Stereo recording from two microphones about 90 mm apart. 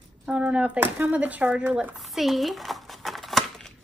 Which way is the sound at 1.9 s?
Centre (ahead or behind).